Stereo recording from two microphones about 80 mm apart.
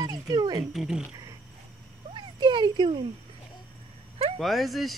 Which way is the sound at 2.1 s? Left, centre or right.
Right.